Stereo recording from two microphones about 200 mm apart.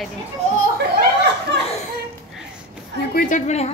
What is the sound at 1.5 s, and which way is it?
Laughter, 60° right (ahead or behind).